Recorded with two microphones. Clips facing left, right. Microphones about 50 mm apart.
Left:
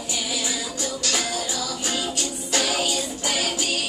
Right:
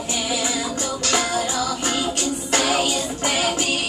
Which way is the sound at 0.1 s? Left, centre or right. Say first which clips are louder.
Right 4 dB; right.